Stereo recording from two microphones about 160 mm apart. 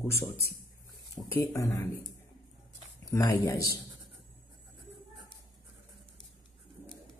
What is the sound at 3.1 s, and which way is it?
Speech, 20° left (ahead or behind).